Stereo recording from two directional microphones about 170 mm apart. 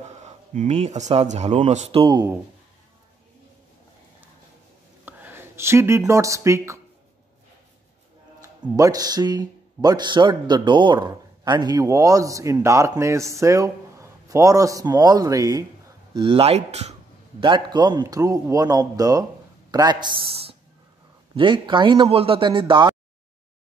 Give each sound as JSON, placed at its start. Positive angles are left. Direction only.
{"t": 0.5, "sound": "speech", "side_deg": -45}
{"t": 5.0, "sound": "speech", "side_deg": -10}
{"t": 8.4, "sound": "speech", "side_deg": -20}
{"t": 16.2, "sound": "speech", "side_deg": -30}
{"t": 17.4, "sound": "speech", "side_deg": -25}